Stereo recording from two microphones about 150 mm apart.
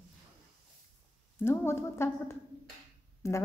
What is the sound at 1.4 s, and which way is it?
A woman's voice, 15° left (ahead or behind).